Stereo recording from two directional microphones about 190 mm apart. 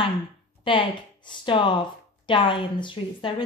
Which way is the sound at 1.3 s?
25° left (ahead or behind).